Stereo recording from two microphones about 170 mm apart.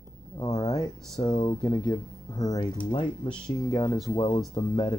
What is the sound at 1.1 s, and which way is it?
Speech, 20° left (ahead or behind).